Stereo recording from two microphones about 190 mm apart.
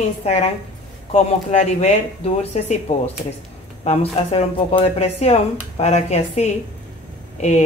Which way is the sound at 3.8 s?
35° left (ahead or behind).